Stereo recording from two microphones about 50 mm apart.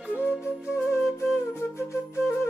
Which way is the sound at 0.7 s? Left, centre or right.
Left.